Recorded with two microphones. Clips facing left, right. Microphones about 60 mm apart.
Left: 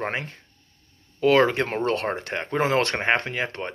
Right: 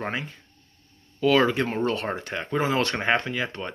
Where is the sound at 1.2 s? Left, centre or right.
Left.